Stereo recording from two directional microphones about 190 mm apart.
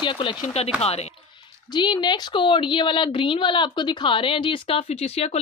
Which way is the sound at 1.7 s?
25° left (ahead or behind).